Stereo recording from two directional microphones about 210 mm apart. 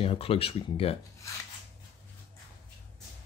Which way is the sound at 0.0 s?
25° left (ahead or behind).